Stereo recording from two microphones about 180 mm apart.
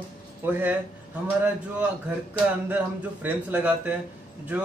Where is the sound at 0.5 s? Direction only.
10° right (ahead or behind).